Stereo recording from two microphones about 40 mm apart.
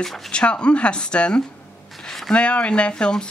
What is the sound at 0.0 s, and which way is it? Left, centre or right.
Speech, centre.